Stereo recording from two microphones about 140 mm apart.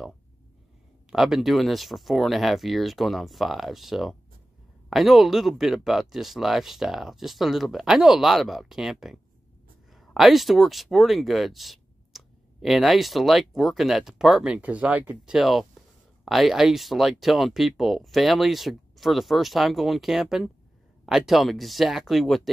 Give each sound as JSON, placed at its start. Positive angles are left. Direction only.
{"t": 1.1, "sound": "speech", "side_deg": -5}